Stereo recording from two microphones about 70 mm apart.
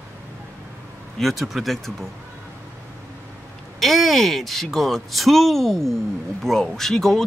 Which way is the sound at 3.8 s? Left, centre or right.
Centre.